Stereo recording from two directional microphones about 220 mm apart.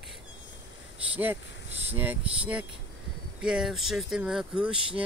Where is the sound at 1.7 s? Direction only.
30° right (ahead or behind).